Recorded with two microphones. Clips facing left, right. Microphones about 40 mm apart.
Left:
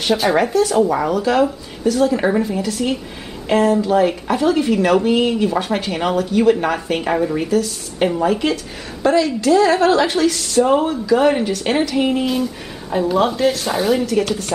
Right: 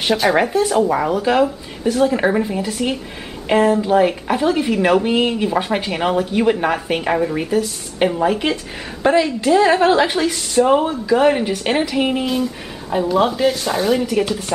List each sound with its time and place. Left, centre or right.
0.1 s speech: centre
0.4 s a woman's voice: centre